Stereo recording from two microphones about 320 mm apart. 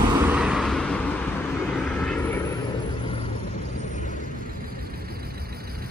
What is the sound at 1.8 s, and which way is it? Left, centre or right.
Vehicle, centre.